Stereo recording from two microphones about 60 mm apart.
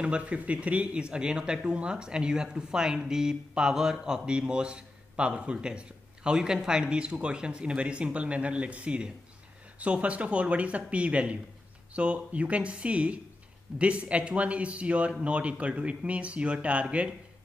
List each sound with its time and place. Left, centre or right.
0.0 s speech: centre